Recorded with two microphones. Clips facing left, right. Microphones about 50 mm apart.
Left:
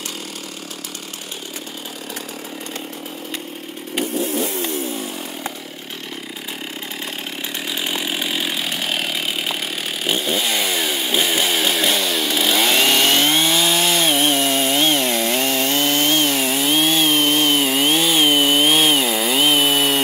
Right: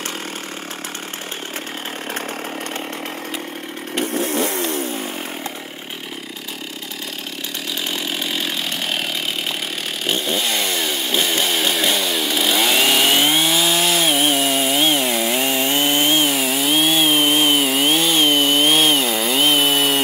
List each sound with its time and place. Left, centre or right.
4.0 s vehicle: right
7.8 s chainsaw: centre
17.6 s chainsaw: centre